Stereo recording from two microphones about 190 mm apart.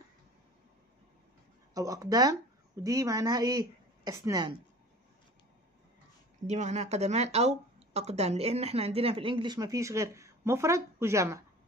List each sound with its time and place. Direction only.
1.7 s speech: 20° right (ahead or behind)
6.4 s speech: 35° right (ahead or behind); by 11.4 s 15° right (ahead or behind)